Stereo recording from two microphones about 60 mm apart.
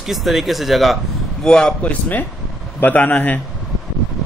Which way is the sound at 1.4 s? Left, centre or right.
Centre.